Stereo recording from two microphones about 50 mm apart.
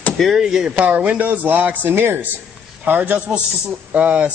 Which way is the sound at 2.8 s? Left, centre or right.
Right.